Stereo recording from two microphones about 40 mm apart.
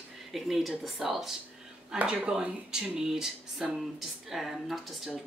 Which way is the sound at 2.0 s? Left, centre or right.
Right.